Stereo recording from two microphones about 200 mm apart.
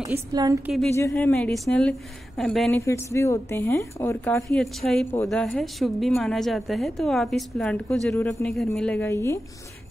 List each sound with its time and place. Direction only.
0.1 s a woman's voice: 20° right (ahead or behind)
0.9 s speech: 10° left (ahead or behind)
2.8 s a woman's voice: 15° left (ahead or behind)